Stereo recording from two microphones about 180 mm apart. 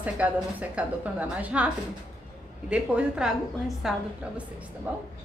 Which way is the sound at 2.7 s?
5° right (ahead or behind).